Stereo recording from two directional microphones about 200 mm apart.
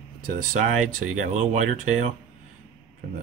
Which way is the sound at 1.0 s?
35° right (ahead or behind).